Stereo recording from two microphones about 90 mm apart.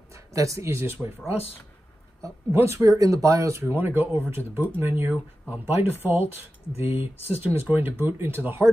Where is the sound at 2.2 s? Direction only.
30° right (ahead or behind).